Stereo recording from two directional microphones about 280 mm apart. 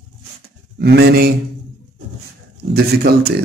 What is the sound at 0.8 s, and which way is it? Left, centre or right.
Mantra, right.